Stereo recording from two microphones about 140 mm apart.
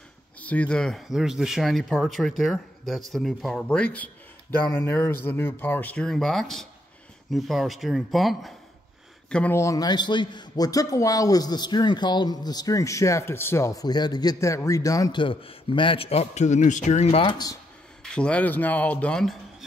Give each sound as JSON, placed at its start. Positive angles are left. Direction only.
{"t": 0.4, "sound": "speech", "side_deg": 10}
{"t": 9.3, "sound": "speech", "side_deg": 10}
{"t": 9.6, "sound": "a man's voice", "side_deg": 25}
{"t": 18.1, "sound": "speech", "side_deg": 10}